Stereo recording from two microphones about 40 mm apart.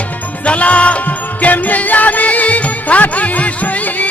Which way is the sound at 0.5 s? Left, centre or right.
Left.